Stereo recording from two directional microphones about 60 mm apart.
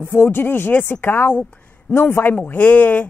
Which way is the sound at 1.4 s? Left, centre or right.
Centre.